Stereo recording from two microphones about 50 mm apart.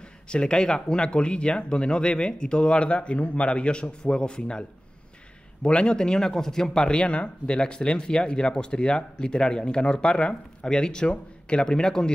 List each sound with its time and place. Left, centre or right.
0.0 s speech: centre